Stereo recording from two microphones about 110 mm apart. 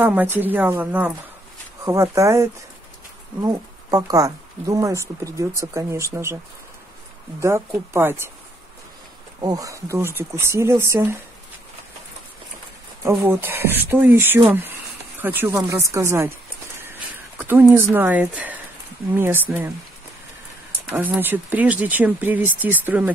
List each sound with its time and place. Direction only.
0.0 s speech: 15° right (ahead or behind)
1.9 s speech: 30° right (ahead or behind)
7.3 s speech: 25° right (ahead or behind)
9.4 s speech: 35° right (ahead or behind)
13.0 s speech: 20° right (ahead or behind)
15.5 s speech: 30° right (ahead or behind)
20.9 s speech: 20° right (ahead or behind)